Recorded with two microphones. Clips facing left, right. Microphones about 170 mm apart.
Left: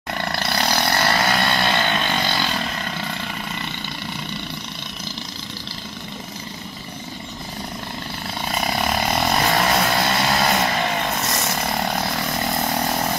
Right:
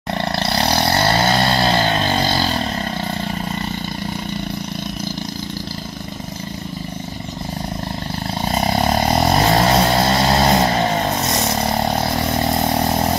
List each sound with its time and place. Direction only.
0.2 s vehicle: 25° right (ahead or behind)
8.4 s vehicle: 35° right (ahead or behind)